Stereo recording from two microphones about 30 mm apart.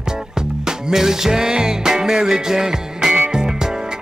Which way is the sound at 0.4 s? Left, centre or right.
Right.